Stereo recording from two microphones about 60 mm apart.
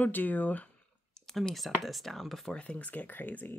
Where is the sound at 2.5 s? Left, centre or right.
Left.